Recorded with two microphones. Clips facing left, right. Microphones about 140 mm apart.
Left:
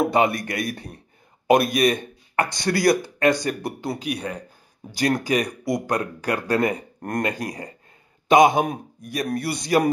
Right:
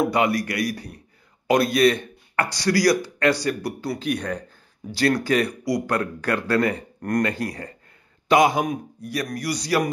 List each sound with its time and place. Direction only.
0.0 s a man's voice: 25° left (ahead or behind)
4.0 s a man's voice: 10° left (ahead or behind)